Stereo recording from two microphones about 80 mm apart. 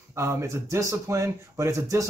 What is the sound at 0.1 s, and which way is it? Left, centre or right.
Speech, right.